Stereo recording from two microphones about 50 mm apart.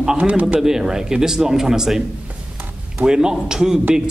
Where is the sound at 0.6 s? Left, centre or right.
Centre.